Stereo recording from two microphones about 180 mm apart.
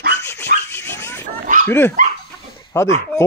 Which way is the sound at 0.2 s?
15° left (ahead or behind).